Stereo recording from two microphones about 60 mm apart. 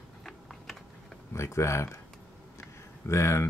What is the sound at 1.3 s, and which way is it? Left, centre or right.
Speech, left.